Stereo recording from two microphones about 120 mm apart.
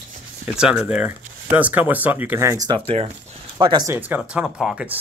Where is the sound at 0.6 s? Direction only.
5° right (ahead or behind); by 2.8 s 30° right (ahead or behind).